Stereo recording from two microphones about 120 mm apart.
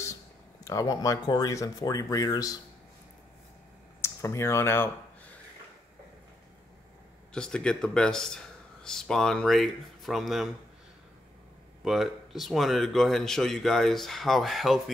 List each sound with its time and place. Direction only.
0.7 s speech: 30° left (ahead or behind)
4.0 s speech: 20° left (ahead or behind)
7.3 s speech: 5° left (ahead or behind)
11.8 s speech: centre (ahead or behind)